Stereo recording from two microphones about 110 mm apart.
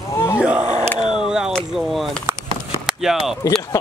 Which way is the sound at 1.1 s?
5° right (ahead or behind).